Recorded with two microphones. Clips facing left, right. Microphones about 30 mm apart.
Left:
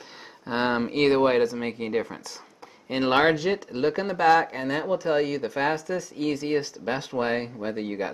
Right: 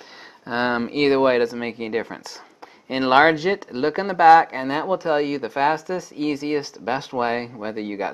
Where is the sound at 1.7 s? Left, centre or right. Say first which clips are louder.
Right 2 dB; centre.